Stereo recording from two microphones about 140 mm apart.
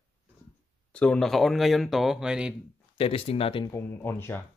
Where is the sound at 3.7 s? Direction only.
15° left (ahead or behind).